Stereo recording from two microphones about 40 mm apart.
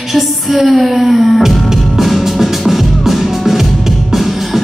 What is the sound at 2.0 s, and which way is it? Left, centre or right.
Music, centre.